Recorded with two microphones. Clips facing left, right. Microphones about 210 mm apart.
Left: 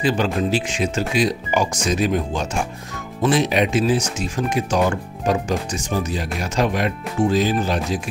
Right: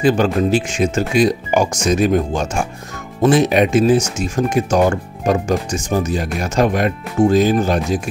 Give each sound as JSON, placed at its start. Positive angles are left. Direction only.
{"t": 0.0, "sound": "speech", "side_deg": -50}